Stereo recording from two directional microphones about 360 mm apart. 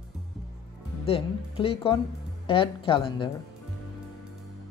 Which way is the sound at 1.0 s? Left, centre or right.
Centre.